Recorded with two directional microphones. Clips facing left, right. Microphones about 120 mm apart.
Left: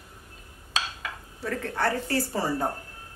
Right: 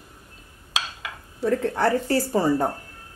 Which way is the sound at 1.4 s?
25° right (ahead or behind).